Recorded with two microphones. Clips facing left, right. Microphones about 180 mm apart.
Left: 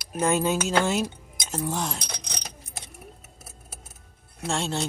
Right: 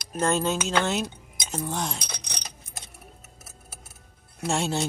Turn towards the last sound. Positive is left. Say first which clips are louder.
# right 2 dB
turn(degrees=-5)  # may be behind; listen again after turning